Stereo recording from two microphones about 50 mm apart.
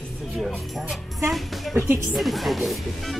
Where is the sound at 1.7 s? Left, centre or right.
Right.